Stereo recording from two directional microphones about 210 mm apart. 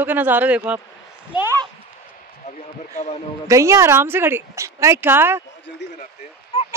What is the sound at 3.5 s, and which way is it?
Speech, 15° right (ahead or behind).